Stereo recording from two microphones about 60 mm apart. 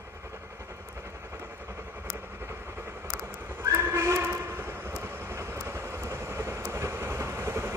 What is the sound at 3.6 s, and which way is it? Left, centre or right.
Train, right.